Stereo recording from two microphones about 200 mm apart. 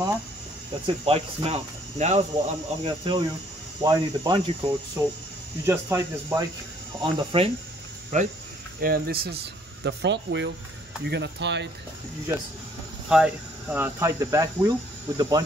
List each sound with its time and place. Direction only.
0.8 s speech: 30° right (ahead or behind)
7.0 s speech: 25° right (ahead or behind)
8.8 s speech: 50° right (ahead or behind)
13.1 s speech: 5° right (ahead or behind)